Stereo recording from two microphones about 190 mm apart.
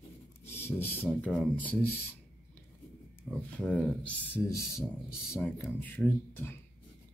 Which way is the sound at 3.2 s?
5° left (ahead or behind).